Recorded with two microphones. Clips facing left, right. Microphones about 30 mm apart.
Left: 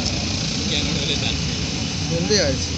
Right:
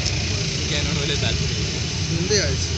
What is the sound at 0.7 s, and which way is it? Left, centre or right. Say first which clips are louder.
Speech: left 1 dB; left.